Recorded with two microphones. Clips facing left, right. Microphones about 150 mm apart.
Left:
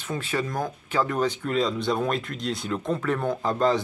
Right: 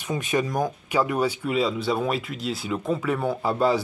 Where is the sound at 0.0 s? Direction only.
15° right (ahead or behind).